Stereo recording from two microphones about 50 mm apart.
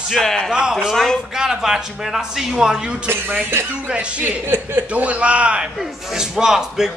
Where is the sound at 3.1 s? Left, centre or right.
Right.